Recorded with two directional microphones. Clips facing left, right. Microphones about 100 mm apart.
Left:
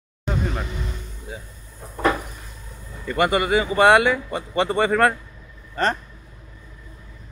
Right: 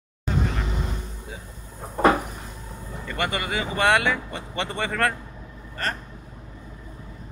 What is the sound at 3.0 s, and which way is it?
Speech, 15° left (ahead or behind).